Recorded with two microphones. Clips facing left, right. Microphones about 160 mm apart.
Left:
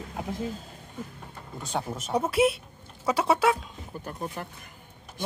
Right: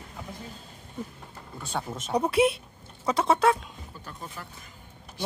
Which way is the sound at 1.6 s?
15° left (ahead or behind).